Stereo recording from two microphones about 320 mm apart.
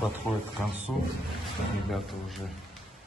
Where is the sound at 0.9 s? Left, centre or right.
Centre.